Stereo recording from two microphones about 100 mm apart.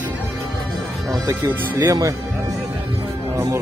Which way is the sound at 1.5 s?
30° right (ahead or behind).